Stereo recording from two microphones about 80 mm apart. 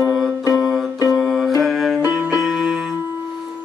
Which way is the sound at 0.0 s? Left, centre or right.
Centre.